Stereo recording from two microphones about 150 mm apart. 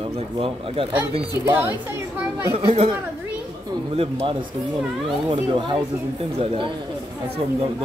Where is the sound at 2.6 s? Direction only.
35° right (ahead or behind).